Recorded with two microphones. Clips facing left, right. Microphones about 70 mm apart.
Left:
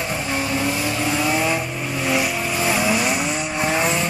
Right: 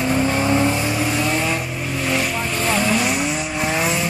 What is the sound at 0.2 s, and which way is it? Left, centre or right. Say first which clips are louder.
Vehicle: right 5 dB; right.